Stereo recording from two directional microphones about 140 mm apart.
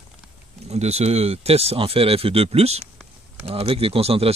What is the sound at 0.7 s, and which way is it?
Speech, 50° right (ahead or behind).